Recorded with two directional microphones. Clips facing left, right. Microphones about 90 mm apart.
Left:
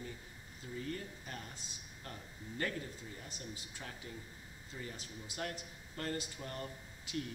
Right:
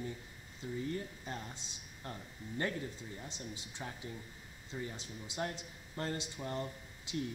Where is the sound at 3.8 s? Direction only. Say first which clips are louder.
Right 5 dB; 20° right (ahead or behind).